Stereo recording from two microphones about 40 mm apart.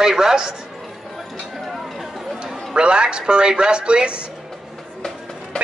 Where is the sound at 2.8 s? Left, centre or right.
Right.